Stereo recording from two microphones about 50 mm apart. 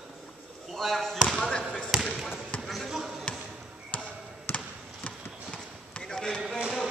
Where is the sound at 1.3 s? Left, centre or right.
Centre.